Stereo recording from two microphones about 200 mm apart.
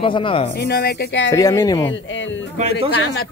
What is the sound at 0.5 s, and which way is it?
Speech, 50° left (ahead or behind).